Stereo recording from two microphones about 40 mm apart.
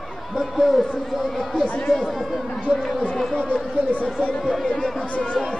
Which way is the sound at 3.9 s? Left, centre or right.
Left.